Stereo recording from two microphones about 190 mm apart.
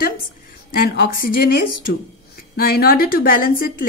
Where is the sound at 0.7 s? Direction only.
50° left (ahead or behind).